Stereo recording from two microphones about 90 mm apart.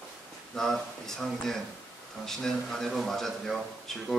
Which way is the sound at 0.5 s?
5° left (ahead or behind).